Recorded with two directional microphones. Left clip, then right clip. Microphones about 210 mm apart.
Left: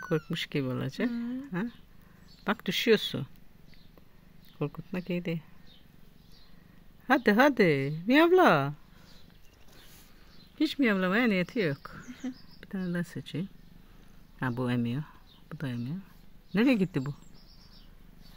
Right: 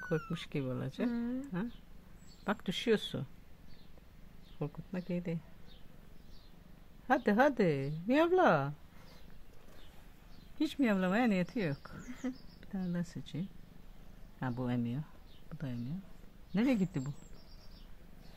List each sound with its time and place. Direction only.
0.1 s speech: 15° left (ahead or behind)
4.6 s speech: 20° left (ahead or behind)
7.1 s speech: 20° left (ahead or behind)
10.8 s speech: 10° left (ahead or behind)